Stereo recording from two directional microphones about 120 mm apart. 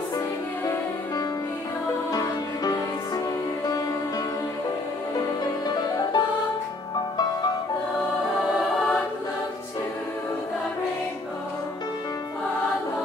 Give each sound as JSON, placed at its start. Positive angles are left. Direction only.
{"t": 2.1, "sound": "music", "side_deg": 30}
{"t": 5.4, "sound": "music", "side_deg": 35}